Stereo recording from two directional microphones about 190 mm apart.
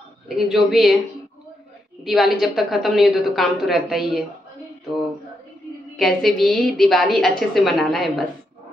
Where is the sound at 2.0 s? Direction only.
Centre (ahead or behind).